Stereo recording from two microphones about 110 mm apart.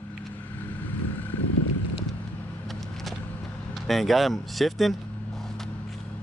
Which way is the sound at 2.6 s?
Centre (ahead or behind).